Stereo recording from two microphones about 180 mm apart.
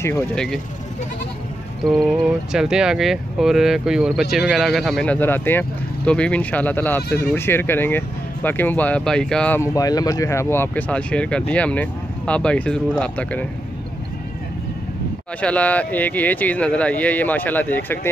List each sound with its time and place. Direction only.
0.0 s speech: 5° left (ahead or behind)
1.9 s speech: 5° right (ahead or behind)
9.6 s speech: 20° left (ahead or behind)
15.4 s speech: 5° left (ahead or behind)